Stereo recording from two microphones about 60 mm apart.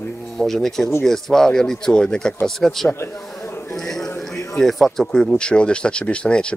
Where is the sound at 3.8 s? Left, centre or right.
Centre.